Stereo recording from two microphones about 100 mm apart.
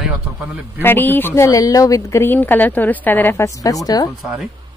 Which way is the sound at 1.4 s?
35° left (ahead or behind).